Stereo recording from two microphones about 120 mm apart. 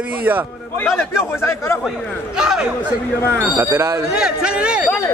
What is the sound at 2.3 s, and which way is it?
Speech, 5° right (ahead or behind).